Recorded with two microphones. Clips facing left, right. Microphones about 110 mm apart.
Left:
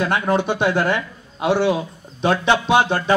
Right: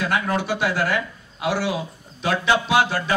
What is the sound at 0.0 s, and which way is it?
A man's voice, 25° left (ahead or behind).